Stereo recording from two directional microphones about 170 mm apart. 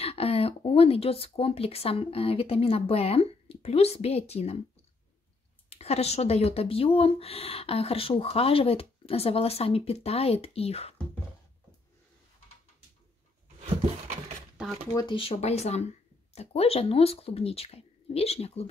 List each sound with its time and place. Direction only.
0.0 s speech: 35° left (ahead or behind)
5.7 s speech: 40° left (ahead or behind)
13.6 s a sound: 40° right (ahead or behind)
15.0 s speech: 30° left (ahead or behind)